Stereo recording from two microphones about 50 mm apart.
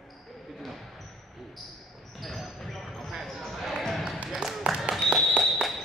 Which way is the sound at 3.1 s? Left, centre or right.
Centre.